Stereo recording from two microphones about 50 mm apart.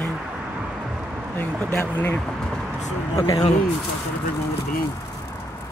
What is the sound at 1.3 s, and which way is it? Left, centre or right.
Speech, left.